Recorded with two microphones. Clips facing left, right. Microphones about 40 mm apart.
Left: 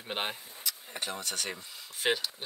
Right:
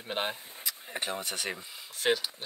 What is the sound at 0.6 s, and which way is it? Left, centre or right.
Speech, right.